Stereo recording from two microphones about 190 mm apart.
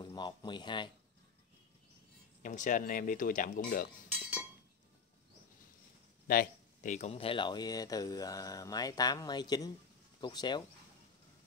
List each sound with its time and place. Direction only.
0.0 s speech: 25° left (ahead or behind)
2.4 s speech: 40° left (ahead or behind)
6.2 s speech: 45° left (ahead or behind); by 10.6 s 25° left (ahead or behind)